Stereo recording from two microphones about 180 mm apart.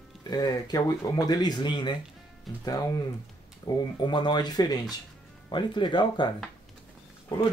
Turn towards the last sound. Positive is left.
turn(degrees=25)  # may be behind; listen again after turning